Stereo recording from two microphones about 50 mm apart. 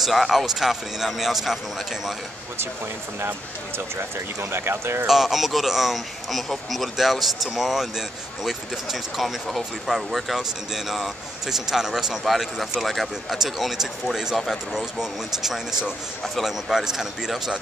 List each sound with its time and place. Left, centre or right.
0.0 s speech: centre
3.2 s speech: right
5.0 s speech: centre